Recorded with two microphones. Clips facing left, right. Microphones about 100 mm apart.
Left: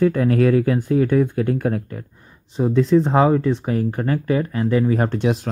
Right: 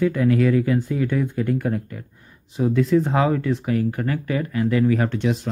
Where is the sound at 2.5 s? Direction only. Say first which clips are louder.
Left 2 dB; 35° left (ahead or behind).